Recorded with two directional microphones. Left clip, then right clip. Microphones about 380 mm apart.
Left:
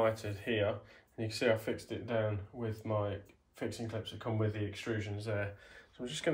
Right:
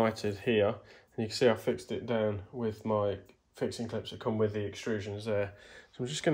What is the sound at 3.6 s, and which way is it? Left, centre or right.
Speech, right.